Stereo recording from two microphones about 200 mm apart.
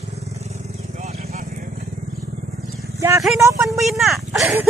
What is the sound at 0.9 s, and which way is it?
Vehicle, 30° right (ahead or behind).